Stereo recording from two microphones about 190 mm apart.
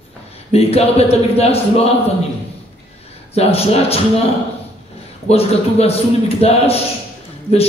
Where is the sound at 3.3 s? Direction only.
30° left (ahead or behind).